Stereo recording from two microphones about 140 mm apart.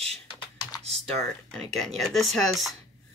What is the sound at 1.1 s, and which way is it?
Speech, 5° left (ahead or behind).